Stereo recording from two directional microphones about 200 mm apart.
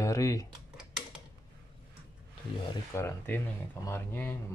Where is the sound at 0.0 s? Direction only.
15° left (ahead or behind).